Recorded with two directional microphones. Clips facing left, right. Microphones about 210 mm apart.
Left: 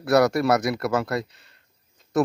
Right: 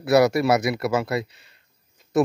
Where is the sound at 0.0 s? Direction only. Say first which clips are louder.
Right 1 dB; 5° right (ahead or behind).